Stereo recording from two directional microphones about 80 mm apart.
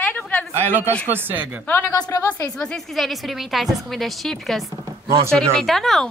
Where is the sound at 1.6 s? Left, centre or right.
Left.